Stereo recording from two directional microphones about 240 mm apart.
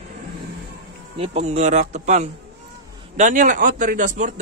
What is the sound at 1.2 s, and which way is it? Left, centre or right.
A man's voice, right.